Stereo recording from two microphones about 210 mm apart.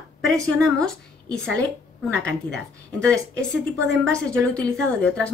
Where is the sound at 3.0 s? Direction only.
5° left (ahead or behind).